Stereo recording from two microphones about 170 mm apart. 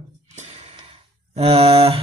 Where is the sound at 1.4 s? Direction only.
35° right (ahead or behind).